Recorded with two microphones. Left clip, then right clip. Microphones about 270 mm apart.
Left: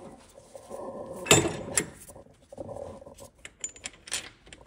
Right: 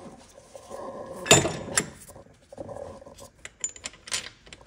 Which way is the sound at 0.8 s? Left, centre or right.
Left.